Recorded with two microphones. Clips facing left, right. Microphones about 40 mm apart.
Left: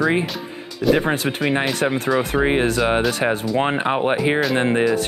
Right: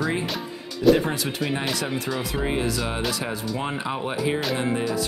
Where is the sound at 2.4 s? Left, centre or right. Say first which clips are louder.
Left 7 dB; left.